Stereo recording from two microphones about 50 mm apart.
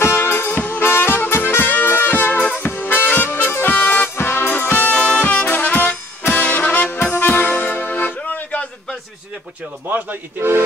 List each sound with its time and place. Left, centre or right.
0.0 s music: left
3.7 s music: left
4.2 s music: left
4.9 s music: centre
5.2 s brass instrument: left
8.2 s music: left
9.8 s a man's voice: right